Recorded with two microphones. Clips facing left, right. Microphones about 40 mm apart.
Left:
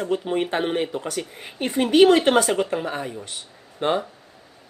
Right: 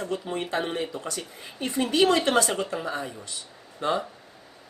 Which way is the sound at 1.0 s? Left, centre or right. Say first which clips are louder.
Left 5 dB; left.